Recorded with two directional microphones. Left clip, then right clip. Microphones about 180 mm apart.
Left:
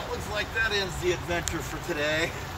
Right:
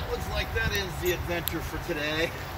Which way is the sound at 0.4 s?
15° right (ahead or behind).